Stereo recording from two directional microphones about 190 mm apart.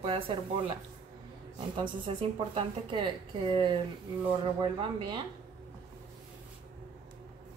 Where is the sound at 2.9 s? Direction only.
25° right (ahead or behind).